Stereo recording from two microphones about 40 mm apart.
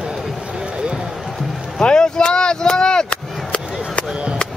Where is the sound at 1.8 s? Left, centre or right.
Left.